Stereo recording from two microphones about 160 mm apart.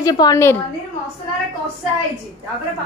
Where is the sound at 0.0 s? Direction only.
25° left (ahead or behind).